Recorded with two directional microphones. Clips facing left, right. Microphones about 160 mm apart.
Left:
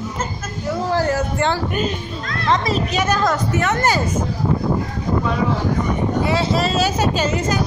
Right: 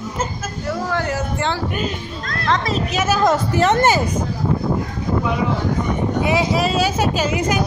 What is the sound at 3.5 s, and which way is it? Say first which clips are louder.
Speech: right 3 dB; 30° right (ahead or behind).